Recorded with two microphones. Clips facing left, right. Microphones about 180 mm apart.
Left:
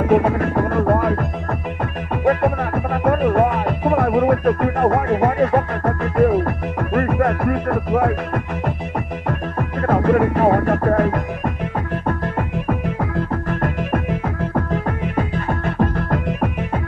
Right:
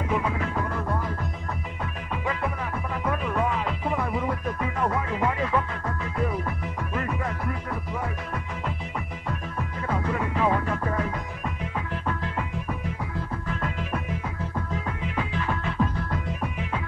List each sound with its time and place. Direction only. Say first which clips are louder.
0.0 s music: left 11 dB; 60° left (ahead or behind)
2.2 s music: left 14 dB; 60° left (ahead or behind)